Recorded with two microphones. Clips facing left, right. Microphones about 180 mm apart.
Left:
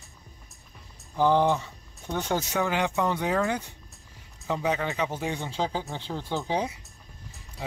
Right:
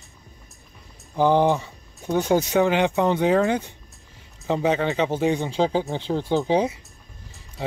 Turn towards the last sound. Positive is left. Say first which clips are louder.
# right 8 dB
turn(degrees=-20)  # may be behind; listen again after turning